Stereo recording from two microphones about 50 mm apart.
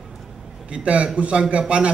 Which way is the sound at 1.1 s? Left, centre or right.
Right.